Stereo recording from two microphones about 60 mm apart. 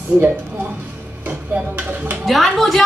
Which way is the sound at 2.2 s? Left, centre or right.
Centre.